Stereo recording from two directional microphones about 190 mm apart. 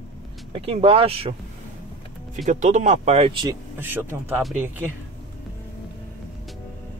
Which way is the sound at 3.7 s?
10° right (ahead or behind).